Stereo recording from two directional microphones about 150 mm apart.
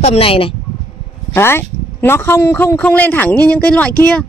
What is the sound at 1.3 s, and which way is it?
A man's voice, 15° left (ahead or behind).